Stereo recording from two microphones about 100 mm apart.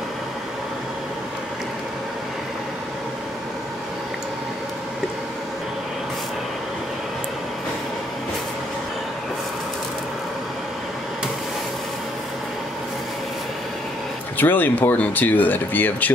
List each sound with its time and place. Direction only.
14.4 s speech: 20° left (ahead or behind)